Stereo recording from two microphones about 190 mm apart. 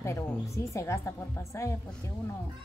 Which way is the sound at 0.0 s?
15° left (ahead or behind).